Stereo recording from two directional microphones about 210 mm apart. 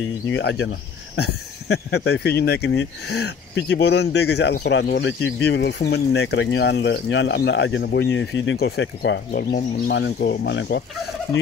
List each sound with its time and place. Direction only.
0.3 s speech: 60° left (ahead or behind)